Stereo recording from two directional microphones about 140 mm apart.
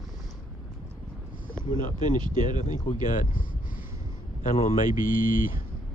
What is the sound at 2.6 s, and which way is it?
Speech, 55° left (ahead or behind).